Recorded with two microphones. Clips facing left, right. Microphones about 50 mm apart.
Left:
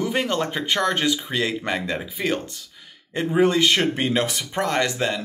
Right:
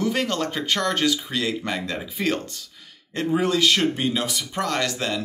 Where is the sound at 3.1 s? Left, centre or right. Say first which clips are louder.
Left 3 dB; centre; by 4.4 s left.